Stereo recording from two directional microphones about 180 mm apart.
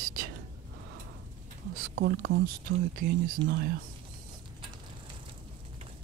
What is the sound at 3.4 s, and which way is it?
Speech, 25° right (ahead or behind).